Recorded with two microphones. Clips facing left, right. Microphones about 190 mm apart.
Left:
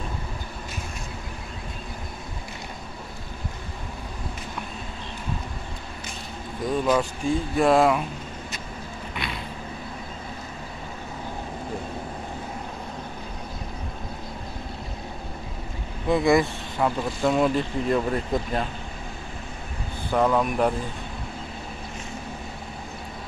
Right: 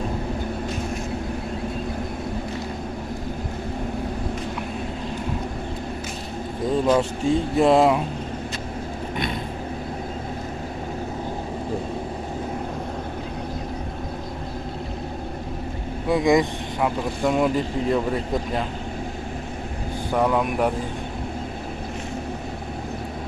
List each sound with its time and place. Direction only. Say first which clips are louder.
6.9 s speech: right 3 dB; 25° right (ahead or behind)
9.1 s a sound: right 6 dB; 45° right (ahead or behind)
16.1 s speech: right 1 dB; 15° right (ahead or behind)
20.1 s speech: even; 10° right (ahead or behind)